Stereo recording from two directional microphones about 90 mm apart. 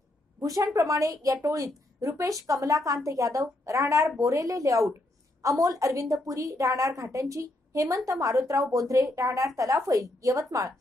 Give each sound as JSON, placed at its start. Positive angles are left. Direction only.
{"t": 0.6, "sound": "a woman's voice", "side_deg": -35}